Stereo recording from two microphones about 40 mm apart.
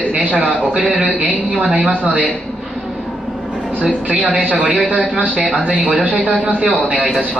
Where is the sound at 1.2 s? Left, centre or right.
Right.